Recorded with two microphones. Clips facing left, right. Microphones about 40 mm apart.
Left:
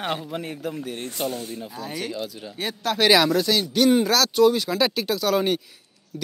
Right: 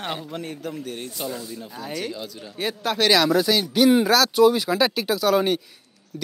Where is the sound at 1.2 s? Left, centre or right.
Left.